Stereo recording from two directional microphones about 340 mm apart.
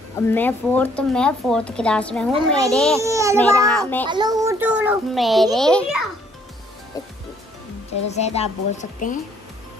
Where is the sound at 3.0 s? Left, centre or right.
Centre.